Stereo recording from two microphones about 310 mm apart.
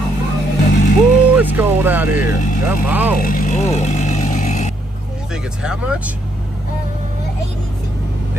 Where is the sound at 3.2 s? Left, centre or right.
Left.